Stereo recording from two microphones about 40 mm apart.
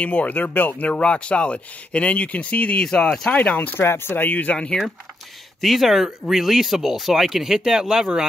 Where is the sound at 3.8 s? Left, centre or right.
Left.